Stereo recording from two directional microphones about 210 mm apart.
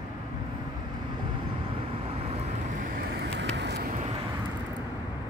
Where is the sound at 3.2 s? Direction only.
55° right (ahead or behind).